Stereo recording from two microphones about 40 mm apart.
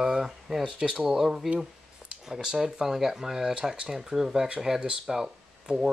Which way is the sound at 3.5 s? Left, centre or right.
Right.